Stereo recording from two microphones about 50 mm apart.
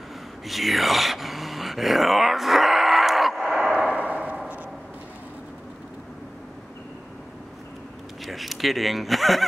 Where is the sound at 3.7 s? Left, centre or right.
Centre.